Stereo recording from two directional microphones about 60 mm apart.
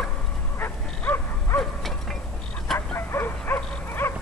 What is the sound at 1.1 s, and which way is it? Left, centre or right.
Dog, left.